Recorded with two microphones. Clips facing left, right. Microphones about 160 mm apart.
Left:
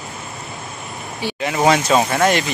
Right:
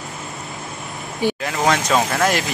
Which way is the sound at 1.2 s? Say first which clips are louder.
Right 6 dB; 50° right (ahead or behind).